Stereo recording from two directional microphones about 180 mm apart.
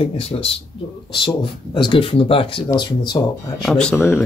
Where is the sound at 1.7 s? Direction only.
30° left (ahead or behind).